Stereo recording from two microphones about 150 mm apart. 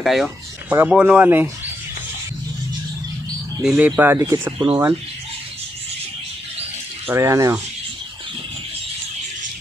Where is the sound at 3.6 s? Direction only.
5° right (ahead or behind).